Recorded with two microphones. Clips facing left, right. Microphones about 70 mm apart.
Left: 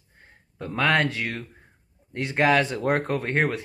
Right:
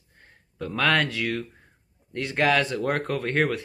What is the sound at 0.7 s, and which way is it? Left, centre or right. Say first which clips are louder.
Speech: left 1 dB; left.